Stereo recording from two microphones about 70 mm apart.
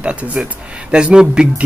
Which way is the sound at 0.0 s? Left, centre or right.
Centre.